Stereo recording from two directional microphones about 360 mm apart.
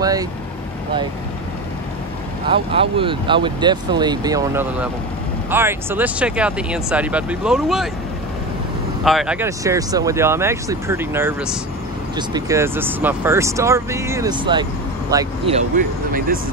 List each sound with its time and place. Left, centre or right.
0.0 s speech: centre
2.4 s speech: centre
9.0 s speech: centre